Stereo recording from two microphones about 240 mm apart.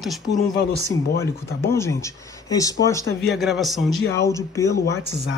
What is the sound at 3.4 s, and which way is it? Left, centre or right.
Speech, centre.